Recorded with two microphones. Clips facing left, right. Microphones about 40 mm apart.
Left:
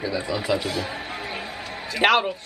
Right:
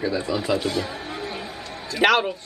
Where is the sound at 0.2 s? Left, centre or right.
Centre.